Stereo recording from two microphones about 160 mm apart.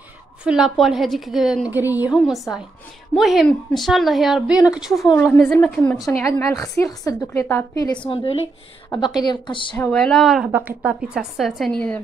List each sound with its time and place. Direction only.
0.4 s a woman's voice: 5° right (ahead or behind)
1.7 s a woman's voice: 10° right (ahead or behind)
2.1 s a woman's voice: centre (ahead or behind)
5.3 s a woman's voice: 10° left (ahead or behind)
8.1 s a woman's voice: 35° left (ahead or behind)
9.8 s a woman's voice: 5° left (ahead or behind)